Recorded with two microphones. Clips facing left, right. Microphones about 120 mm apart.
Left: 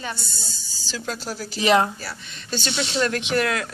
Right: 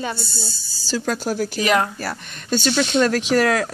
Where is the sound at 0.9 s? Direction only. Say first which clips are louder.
Right 8 dB; 50° right (ahead or behind).